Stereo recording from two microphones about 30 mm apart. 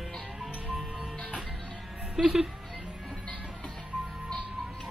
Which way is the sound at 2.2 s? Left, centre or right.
Centre.